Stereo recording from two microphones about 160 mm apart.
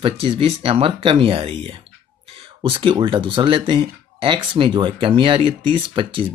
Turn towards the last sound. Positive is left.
turn(degrees=-30)  # may be behind; listen again after turning